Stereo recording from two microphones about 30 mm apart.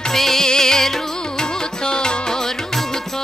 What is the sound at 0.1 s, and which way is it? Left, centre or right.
Music, centre.